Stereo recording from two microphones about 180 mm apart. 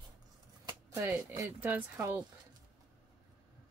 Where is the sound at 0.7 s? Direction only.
15° right (ahead or behind).